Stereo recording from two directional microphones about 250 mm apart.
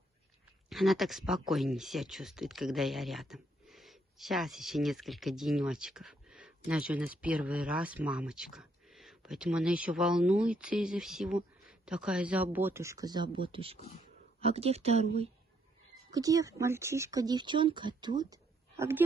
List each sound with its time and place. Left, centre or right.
0.7 s speech: centre; by 15.0 s right
16.1 s speech: centre